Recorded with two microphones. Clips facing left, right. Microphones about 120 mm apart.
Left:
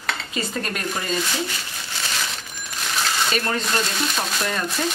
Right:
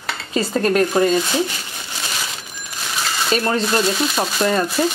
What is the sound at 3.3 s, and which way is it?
Speech, 30° right (ahead or behind).